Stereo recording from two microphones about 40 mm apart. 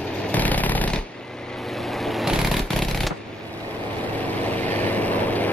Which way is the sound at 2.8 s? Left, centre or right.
Centre.